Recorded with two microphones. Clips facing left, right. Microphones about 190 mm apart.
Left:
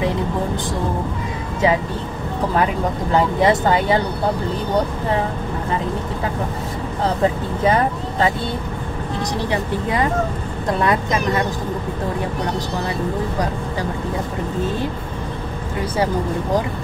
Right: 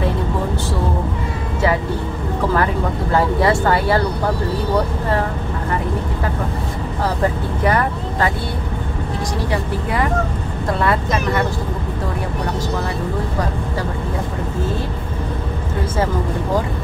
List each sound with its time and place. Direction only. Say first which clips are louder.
3.2 s speech: even; 20° left (ahead or behind)
7.6 s speech: left 1 dB; 20° left (ahead or behind)
9.5 s speech: left 1 dB; 20° left (ahead or behind)